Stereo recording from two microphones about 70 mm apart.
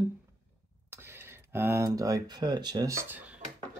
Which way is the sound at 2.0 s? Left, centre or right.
Right.